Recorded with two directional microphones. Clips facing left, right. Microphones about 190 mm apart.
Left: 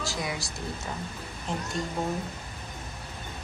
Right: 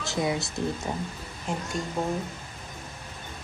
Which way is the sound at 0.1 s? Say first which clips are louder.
Right 6 dB; 25° right (ahead or behind).